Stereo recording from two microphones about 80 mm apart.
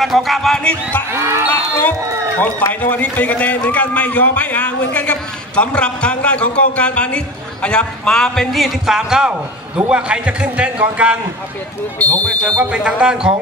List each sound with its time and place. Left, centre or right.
0.0 s music: centre
1.1 s speech: right
1.5 s a man's voice: left; by 11.1 s centre
12.0 s speech: centre
12.6 s a man's voice: centre